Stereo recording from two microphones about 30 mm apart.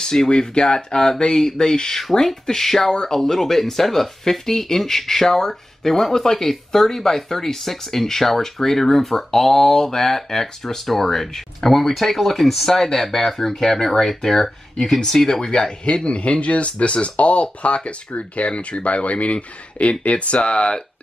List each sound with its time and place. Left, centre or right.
0.0 s speech: centre
12.6 s speech: centre
16.2 s speech: left